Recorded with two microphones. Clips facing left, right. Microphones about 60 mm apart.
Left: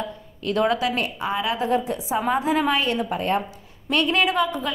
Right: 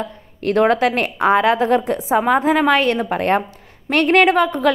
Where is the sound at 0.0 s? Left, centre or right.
Right.